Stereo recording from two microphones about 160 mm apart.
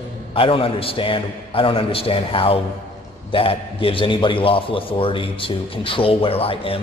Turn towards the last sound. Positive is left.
turn(degrees=35)  # may be behind; listen again after turning